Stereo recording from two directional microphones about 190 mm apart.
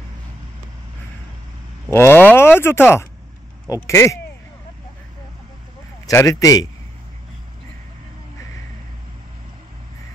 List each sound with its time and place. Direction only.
1.9 s speech: 10° left (ahead or behind)
6.0 s speech: 20° left (ahead or behind)